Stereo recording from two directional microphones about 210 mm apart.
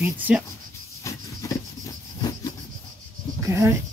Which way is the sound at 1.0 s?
15° left (ahead or behind).